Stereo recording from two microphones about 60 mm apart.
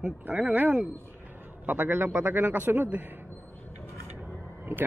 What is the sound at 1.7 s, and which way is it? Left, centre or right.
Speech, right.